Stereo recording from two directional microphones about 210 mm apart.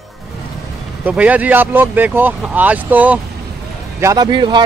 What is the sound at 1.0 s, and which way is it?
A man's voice, 5° right (ahead or behind).